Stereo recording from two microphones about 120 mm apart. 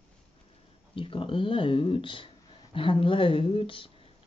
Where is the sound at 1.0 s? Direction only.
45° left (ahead or behind).